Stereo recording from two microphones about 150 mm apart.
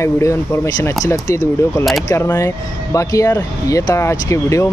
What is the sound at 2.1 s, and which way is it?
Speech, 15° left (ahead or behind).